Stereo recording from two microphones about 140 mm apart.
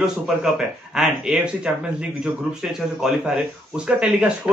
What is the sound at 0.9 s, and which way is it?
Speech, 5° right (ahead or behind).